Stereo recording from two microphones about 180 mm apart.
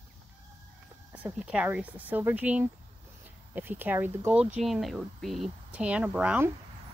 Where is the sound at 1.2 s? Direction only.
5° right (ahead or behind).